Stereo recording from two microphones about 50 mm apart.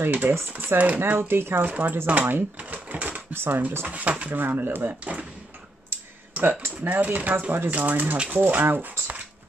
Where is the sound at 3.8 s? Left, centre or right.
Right.